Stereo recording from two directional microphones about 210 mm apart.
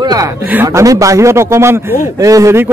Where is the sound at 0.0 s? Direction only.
15° right (ahead or behind).